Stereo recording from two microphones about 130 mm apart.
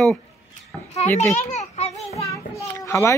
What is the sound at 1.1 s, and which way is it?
Speech, 20° left (ahead or behind).